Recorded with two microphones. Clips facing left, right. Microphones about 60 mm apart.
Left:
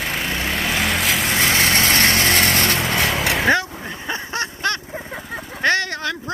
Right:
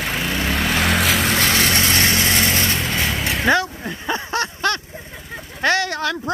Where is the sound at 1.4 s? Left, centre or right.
Left.